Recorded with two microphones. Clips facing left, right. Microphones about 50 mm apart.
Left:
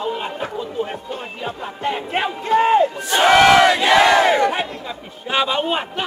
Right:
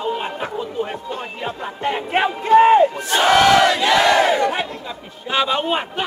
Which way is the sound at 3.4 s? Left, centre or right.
Left.